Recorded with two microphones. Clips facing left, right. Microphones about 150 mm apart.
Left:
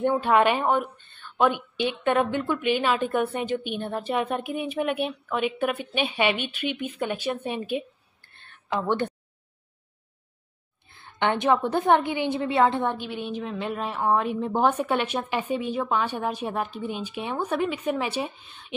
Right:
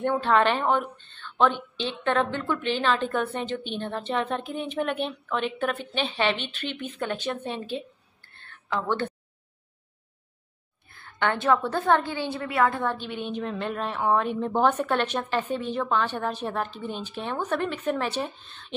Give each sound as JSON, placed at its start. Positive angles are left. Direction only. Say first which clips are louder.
{"t": 0.1, "sound": "a woman's voice", "louder": "right 1 dB", "side_deg": 10}
{"t": 10.9, "sound": "a woman's voice", "louder": "left 2 dB", "side_deg": 20}
{"t": 13.1, "sound": "a woman's voice", "louder": "even", "side_deg": 5}